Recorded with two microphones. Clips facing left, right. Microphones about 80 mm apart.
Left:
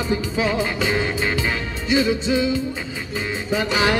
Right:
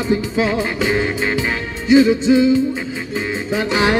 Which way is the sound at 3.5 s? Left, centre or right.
Right.